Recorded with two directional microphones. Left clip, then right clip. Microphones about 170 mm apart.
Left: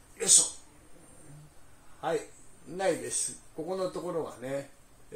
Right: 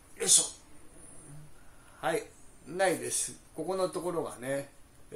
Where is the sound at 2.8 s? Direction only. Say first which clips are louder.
Right 1 dB; 30° right (ahead or behind).